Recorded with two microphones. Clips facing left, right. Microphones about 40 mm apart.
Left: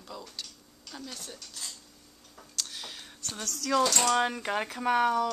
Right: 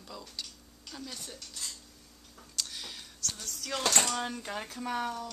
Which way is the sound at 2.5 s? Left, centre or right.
Centre.